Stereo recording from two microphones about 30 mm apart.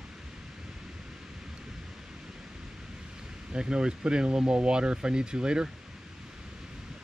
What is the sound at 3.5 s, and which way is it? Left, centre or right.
Speech, right.